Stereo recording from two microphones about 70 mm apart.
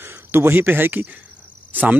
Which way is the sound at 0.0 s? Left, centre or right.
Right.